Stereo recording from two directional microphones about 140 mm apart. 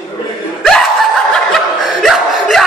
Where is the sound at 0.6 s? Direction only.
Centre (ahead or behind).